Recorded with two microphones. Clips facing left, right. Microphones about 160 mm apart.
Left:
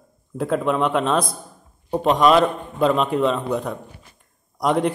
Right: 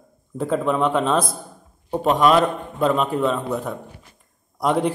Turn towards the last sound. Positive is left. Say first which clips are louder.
# even
turn(degrees=-5)  # may be behind; listen again after turning